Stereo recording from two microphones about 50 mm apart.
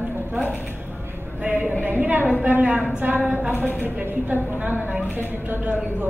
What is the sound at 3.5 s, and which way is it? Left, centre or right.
Speech, left.